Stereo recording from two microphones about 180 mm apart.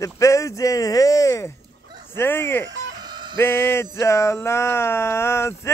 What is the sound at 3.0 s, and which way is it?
Synthetic singing, 25° right (ahead or behind).